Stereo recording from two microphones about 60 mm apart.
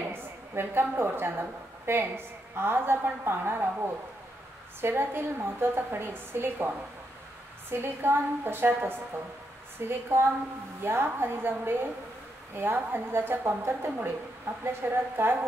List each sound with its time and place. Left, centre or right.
0.1 s a woman's voice: right
7.7 s a woman's voice: right